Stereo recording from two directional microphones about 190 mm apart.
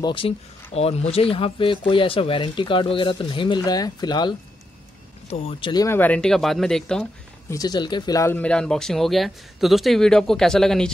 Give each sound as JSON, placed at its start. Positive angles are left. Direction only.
{"t": 0.0, "sound": "speech", "side_deg": 25}
{"t": 7.4, "sound": "speech", "side_deg": 20}